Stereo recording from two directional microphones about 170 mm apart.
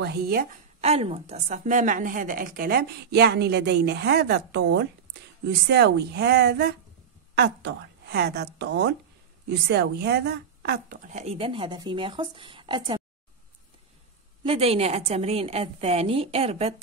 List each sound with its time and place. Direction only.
0.0 s a woman's voice: 65° right (ahead or behind)
0.7 s a woman's voice: 40° right (ahead or behind); by 4.8 s 90° right
5.7 s a woman's voice: 80° right
9.5 s a woman's voice: 75° right (ahead or behind)
11.1 s a woman's voice: 40° right (ahead or behind)
14.4 s a woman's voice: 35° right (ahead or behind)